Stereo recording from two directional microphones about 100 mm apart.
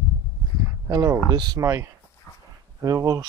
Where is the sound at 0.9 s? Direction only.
35° right (ahead or behind).